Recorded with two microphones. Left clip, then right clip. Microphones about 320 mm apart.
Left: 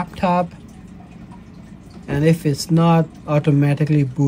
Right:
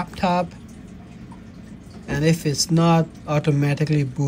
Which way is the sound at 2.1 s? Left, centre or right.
Centre.